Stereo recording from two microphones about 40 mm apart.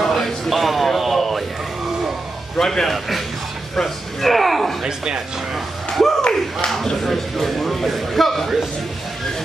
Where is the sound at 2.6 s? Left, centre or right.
Centre.